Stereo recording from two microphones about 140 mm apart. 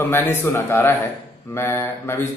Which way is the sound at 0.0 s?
15° left (ahead or behind).